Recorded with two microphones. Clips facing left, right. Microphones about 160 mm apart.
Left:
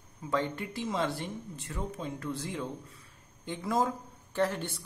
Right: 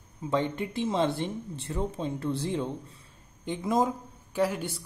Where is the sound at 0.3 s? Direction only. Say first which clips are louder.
Right 3 dB; 20° right (ahead or behind).